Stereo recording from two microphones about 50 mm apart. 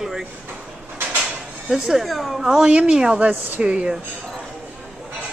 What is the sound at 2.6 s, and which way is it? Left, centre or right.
Speech, right.